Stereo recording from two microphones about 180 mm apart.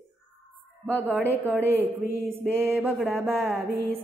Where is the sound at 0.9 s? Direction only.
10° right (ahead or behind).